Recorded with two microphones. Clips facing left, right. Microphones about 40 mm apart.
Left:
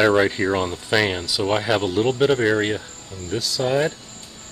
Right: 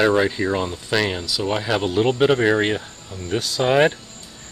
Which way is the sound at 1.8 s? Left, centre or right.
Centre.